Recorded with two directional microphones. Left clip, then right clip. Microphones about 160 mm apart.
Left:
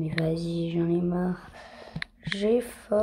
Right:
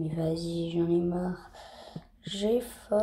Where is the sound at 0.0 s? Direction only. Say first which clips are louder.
Left 2 dB; 10° left (ahead or behind).